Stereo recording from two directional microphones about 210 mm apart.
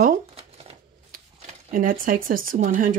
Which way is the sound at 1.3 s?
35° right (ahead or behind).